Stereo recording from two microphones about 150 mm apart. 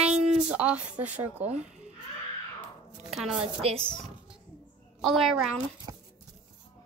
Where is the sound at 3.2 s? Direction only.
5° right (ahead or behind).